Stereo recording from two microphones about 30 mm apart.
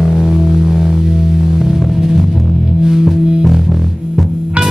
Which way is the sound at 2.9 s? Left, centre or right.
Centre.